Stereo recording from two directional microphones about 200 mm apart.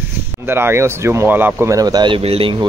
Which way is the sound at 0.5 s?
10° right (ahead or behind).